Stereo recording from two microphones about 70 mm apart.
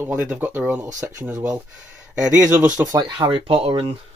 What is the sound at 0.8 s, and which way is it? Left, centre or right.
Speech, right.